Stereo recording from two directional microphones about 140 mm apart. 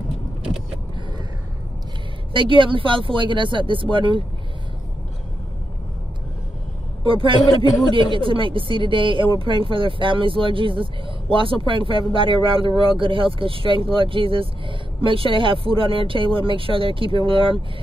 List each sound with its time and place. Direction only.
2.3 s speech: 35° right (ahead or behind)
7.0 s a man's voice: 40° right (ahead or behind)